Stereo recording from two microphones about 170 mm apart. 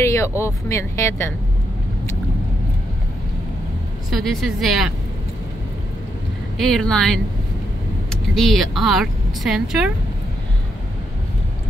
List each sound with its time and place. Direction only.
0.0 s speech: 15° left (ahead or behind)
4.1 s a woman's voice: centre (ahead or behind)
6.6 s a woman's voice: 5° left (ahead or behind)